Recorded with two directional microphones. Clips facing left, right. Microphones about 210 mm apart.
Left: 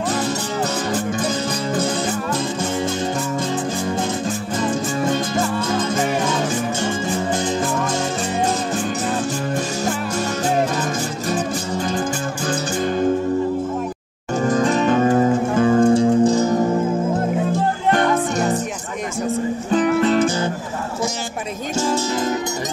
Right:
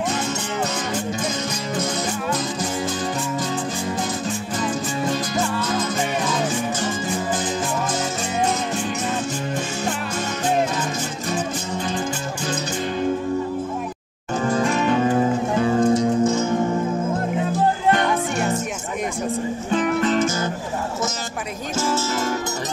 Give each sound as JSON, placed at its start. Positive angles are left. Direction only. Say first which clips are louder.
{"t": 12.4, "sound": "music", "louder": "left 4 dB", "side_deg": 45}
{"t": 14.5, "sound": "music", "louder": "left 3 dB", "side_deg": 35}
{"t": 15.9, "sound": "music", "louder": "left 4 dB", "side_deg": 30}
{"t": 17.9, "sound": "music", "louder": "left 3 dB", "side_deg": 40}
{"t": 19.7, "sound": "music", "louder": "left 4 dB", "side_deg": 35}